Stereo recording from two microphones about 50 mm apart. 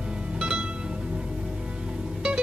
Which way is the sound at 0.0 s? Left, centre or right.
Centre.